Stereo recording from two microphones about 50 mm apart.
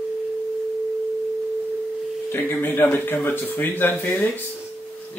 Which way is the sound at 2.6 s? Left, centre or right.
Left.